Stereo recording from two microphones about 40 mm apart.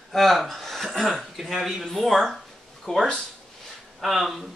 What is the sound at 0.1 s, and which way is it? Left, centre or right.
A man's voice, centre.